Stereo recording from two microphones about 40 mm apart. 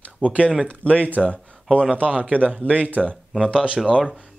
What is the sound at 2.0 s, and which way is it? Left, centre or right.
A man's voice, right.